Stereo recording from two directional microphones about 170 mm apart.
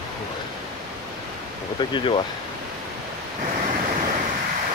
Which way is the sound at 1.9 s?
30° left (ahead or behind).